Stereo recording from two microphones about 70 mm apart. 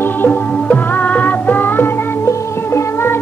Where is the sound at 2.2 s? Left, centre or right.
Left.